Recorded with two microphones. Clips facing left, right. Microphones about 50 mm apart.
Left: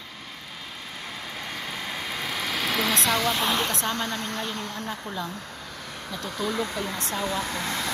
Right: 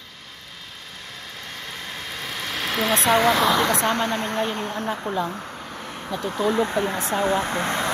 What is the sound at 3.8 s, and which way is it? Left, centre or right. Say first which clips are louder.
Speech: right 6 dB; right.